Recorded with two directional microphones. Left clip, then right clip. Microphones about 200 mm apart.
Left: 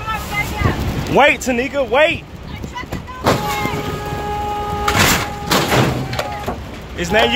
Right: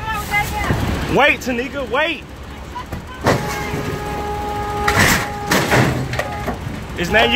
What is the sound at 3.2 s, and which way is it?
Vehicle, 5° left (ahead or behind).